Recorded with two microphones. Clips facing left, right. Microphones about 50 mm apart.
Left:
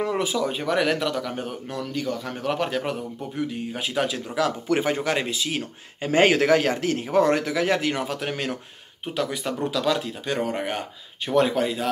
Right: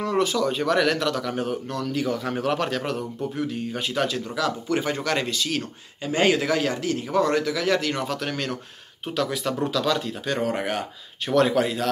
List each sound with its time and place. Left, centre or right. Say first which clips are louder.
0.1 s speech: right 2 dB; centre
2.5 s speech: even; centre
4.4 s speech: left 3 dB; left
6.0 s a man's voice: left 3 dB; left
9.1 s speech: right 1 dB; centre